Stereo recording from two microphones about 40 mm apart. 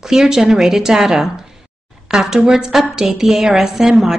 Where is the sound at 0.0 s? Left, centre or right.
Centre.